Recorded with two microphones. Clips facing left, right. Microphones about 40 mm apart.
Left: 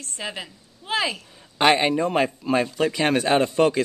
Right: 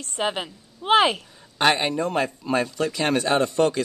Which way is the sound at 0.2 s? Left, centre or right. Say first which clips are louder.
Right 7 dB; right.